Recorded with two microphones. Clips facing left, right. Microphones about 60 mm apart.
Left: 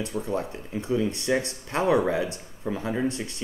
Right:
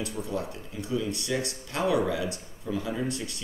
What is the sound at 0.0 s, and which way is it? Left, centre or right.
Speech, left.